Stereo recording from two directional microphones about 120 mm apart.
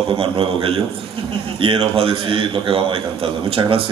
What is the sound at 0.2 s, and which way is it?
A man's voice, 50° right (ahead or behind).